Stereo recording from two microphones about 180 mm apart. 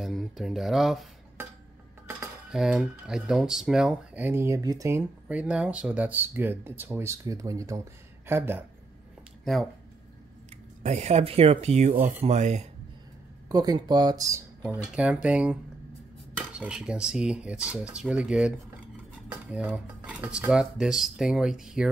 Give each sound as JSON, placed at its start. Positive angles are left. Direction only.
{"t": 0.0, "sound": "speech", "side_deg": 0}
{"t": 2.5, "sound": "speech", "side_deg": -5}
{"t": 9.4, "sound": "speech", "side_deg": 0}
{"t": 10.8, "sound": "speech", "side_deg": -40}
{"t": 13.5, "sound": "speech", "side_deg": -20}
{"t": 19.5, "sound": "speech", "side_deg": -5}